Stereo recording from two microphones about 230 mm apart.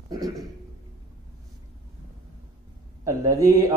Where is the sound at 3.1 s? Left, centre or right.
Centre.